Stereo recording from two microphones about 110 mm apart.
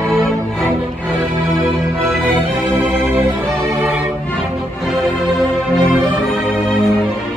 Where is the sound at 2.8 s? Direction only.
20° right (ahead or behind).